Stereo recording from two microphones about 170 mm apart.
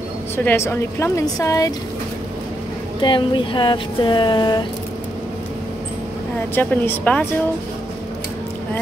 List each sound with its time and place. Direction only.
0.4 s a woman's voice: 10° left (ahead or behind)
3.0 s speech: 30° left (ahead or behind)
6.5 s a woman's voice: 10° left (ahead or behind)